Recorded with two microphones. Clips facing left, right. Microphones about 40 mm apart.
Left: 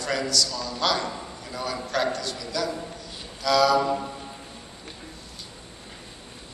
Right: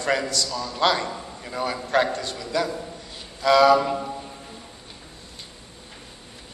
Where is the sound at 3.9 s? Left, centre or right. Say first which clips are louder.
Even; centre.